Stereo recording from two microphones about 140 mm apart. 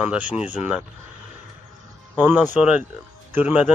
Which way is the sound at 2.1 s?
15° right (ahead or behind).